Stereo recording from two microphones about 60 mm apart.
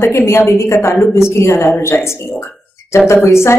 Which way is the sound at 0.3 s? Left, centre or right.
Left.